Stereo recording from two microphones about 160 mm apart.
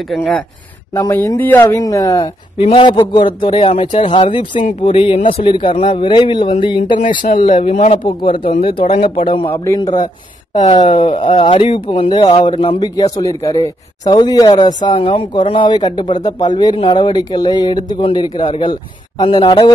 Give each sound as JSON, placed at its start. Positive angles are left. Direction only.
{"t": 0.1, "sound": "speech", "side_deg": 0}
{"t": 0.9, "sound": "a man's voice", "side_deg": 20}
{"t": 2.6, "sound": "speech", "side_deg": 30}
{"t": 7.4, "sound": "speech", "side_deg": 45}
{"t": 12.8, "sound": "speech", "side_deg": 25}